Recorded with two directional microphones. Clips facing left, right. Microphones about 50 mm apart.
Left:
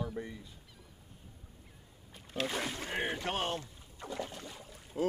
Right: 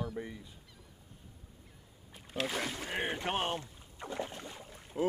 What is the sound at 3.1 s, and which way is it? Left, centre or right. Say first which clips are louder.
Boat: right 2 dB; centre.